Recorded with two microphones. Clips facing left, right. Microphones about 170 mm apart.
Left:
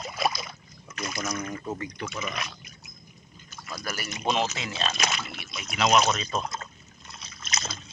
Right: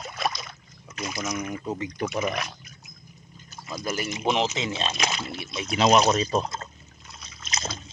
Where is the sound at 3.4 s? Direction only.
30° right (ahead or behind).